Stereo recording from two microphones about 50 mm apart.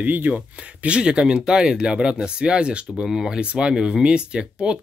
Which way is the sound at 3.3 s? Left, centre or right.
Right.